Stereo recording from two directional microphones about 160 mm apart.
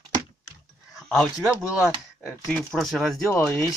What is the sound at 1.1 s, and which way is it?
Speech, centre (ahead or behind).